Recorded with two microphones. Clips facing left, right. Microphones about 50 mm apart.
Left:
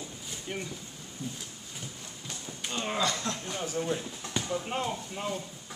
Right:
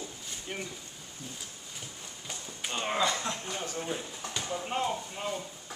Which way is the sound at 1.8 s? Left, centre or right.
Centre.